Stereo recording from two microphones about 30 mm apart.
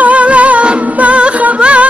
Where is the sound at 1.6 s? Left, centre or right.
Right.